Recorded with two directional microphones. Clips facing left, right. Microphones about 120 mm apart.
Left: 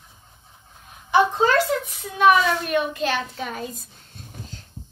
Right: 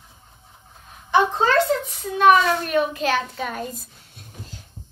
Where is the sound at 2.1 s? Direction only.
Centre (ahead or behind).